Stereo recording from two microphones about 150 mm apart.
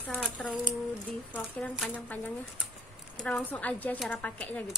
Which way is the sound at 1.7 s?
5° right (ahead or behind).